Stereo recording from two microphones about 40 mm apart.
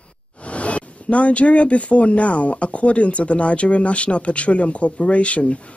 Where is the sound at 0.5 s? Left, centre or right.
Left.